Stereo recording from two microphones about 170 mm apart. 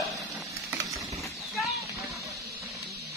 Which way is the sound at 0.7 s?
20° right (ahead or behind).